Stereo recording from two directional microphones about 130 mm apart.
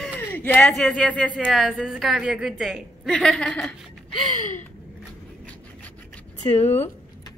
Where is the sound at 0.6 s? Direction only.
5° left (ahead or behind).